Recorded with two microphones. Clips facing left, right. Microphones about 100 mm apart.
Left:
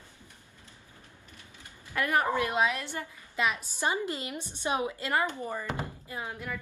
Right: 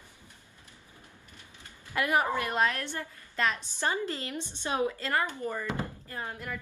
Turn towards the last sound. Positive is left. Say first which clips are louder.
# left 1 dB
turn(degrees=5)  # may be behind; listen again after turning